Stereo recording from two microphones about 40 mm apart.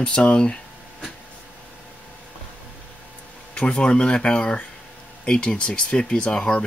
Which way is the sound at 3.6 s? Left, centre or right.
Left.